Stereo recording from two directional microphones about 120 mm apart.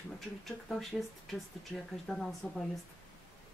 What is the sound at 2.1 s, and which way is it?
Speech, centre (ahead or behind).